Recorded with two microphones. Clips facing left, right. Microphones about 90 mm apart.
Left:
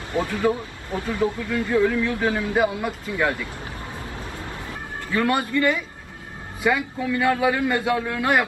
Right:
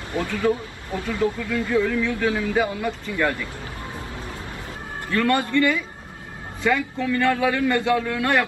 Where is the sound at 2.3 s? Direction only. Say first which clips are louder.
Left 1 dB; 15° left (ahead or behind).